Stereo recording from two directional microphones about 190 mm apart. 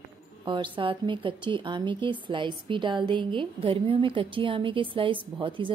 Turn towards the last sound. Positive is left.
turn(degrees=-25)  # may be behind; listen again after turning